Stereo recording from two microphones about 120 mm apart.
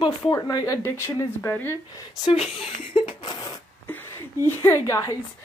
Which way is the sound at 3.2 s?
35° left (ahead or behind).